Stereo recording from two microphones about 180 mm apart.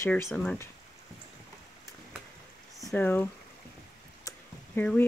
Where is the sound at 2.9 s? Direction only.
10° left (ahead or behind).